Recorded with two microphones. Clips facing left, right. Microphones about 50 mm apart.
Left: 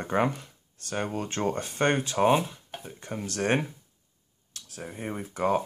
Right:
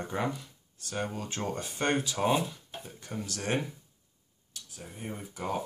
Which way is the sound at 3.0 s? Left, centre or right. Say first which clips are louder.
Left 7 dB; left.